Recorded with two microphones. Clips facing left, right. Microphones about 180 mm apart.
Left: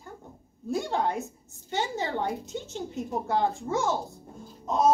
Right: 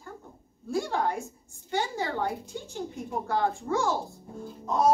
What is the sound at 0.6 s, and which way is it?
A woman's voice, 20° left (ahead or behind).